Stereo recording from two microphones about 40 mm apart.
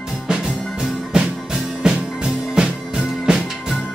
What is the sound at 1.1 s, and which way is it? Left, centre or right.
Music, right.